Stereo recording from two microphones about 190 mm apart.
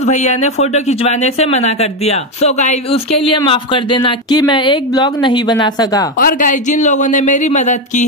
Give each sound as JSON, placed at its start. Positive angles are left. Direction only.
{"t": 0.0, "sound": "speech", "side_deg": 35}
{"t": 6.1, "sound": "speech", "side_deg": 45}